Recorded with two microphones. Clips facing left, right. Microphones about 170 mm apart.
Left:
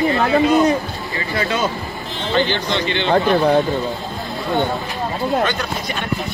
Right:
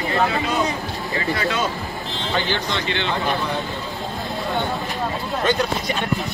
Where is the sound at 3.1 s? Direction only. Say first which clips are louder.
Left 12 dB; 45° left (ahead or behind).